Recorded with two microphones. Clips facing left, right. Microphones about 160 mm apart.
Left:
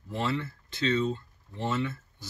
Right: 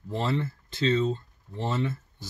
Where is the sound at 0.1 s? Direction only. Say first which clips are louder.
Right 2 dB; 40° right (ahead or behind).